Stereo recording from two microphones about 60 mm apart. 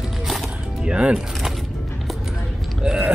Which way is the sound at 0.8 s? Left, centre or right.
Centre.